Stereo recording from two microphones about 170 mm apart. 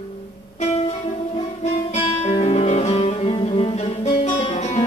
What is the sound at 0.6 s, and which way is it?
Music, 40° left (ahead or behind).